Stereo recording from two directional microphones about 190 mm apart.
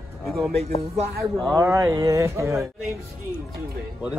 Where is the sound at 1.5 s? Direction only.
15° right (ahead or behind).